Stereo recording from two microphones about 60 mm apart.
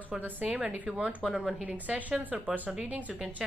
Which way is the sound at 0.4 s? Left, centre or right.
Right.